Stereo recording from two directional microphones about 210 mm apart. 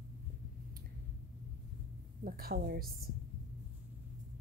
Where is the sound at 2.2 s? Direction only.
45° right (ahead or behind).